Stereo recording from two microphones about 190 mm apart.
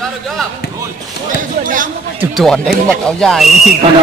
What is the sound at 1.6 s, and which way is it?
Speech, 45° right (ahead or behind).